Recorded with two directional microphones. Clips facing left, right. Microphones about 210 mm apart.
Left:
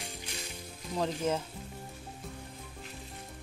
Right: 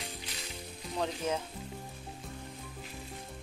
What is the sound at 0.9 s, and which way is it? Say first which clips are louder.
Speech: left 2 dB; centre (ahead or behind).